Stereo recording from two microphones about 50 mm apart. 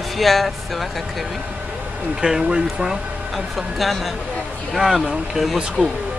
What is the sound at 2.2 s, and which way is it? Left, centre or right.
Speech, centre.